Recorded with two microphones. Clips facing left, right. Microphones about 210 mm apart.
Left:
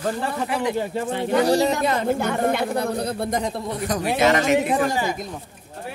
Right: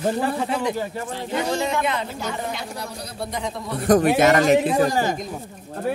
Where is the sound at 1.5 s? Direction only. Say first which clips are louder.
Left 4 dB; 35° left (ahead or behind).